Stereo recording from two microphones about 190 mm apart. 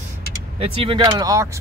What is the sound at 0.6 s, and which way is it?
Speech, 30° right (ahead or behind).